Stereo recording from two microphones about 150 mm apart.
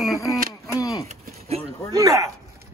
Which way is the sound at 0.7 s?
25° left (ahead or behind).